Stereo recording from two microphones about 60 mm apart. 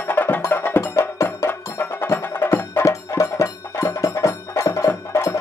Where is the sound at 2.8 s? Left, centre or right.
Left.